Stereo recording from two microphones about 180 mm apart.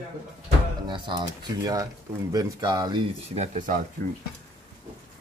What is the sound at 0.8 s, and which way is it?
Speech, 25° right (ahead or behind).